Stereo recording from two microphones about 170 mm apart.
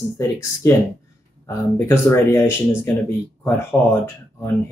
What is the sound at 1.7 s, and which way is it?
Speech, 15° left (ahead or behind).